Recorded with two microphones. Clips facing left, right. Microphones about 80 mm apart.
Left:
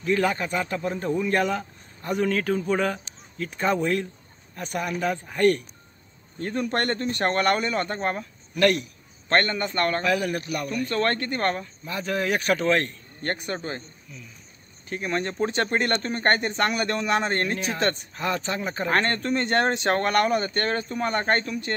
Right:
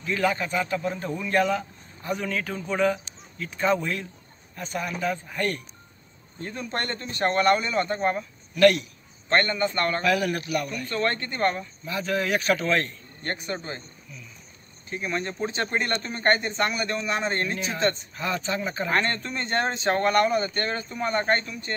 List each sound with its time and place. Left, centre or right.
0.0 s a man's voice: left
6.4 s speech: left
9.3 s speech: left
10.0 s a man's voice: left
10.9 s speech: left
11.8 s a man's voice: left
14.9 s speech: left